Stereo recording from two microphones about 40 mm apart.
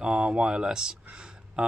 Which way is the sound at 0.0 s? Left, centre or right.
Right.